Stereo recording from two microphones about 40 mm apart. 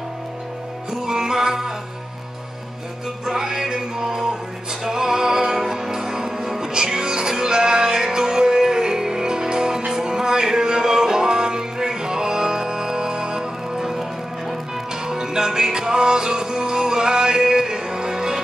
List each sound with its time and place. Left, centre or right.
1.0 s music: centre
3.3 s music: centre
15.0 s music: centre